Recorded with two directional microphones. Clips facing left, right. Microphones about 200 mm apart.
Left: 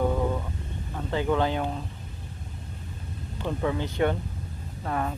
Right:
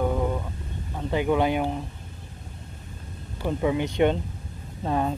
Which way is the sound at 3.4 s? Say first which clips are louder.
Right 4 dB; 15° right (ahead or behind).